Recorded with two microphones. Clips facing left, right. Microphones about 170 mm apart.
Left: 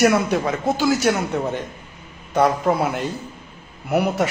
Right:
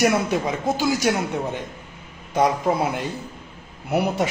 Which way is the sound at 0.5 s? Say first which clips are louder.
Left 2 dB; 15° right (ahead or behind).